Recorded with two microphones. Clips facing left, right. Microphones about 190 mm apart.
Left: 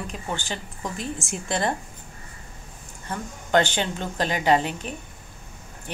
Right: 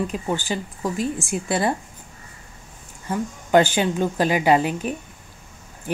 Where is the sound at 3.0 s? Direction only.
10° right (ahead or behind).